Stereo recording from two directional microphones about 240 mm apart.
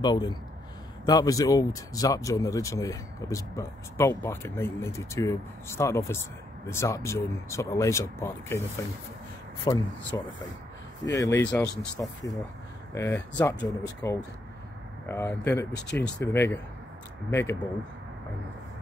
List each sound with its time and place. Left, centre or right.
0.0 s speech: centre
9.7 s speech: centre